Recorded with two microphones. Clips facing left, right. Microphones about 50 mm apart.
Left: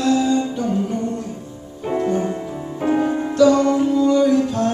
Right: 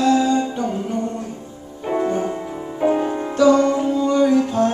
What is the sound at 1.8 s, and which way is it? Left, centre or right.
Music, centre.